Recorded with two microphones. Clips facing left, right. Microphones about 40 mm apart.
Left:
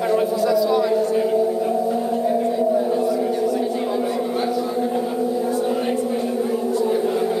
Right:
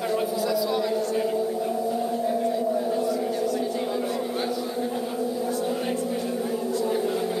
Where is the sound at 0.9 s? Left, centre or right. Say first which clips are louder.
Left 6 dB; centre.